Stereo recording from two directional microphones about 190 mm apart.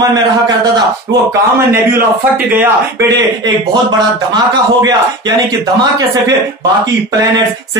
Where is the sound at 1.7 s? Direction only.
15° right (ahead or behind).